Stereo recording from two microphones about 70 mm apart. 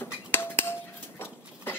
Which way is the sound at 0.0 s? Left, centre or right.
Left.